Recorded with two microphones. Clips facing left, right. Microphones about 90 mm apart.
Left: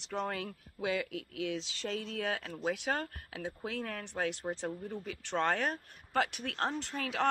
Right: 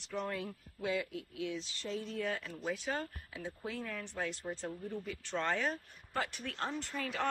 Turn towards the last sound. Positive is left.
turn(degrees=70)  # may be behind; listen again after turning